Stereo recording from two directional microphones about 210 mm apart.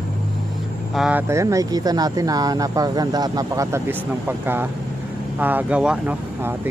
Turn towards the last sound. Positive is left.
turn(degrees=-10)  # may be behind; listen again after turning